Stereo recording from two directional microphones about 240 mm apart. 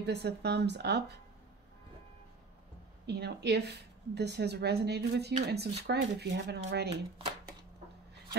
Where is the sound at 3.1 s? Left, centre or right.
Right.